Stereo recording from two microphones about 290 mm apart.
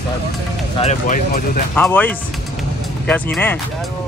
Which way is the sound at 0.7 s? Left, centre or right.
Left.